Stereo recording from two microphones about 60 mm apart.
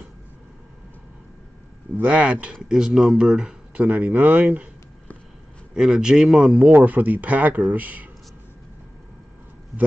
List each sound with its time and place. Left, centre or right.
2.0 s speech: right
2.7 s speech: centre
3.7 s speech: right
5.8 s speech: centre
6.6 s speech: right